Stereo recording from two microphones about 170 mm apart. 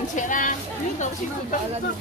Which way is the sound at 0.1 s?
50° left (ahead or behind).